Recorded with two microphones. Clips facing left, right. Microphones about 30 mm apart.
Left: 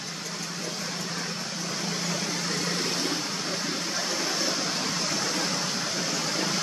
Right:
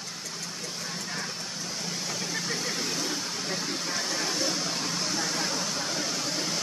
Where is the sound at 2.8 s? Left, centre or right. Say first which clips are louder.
Left 2 dB; left.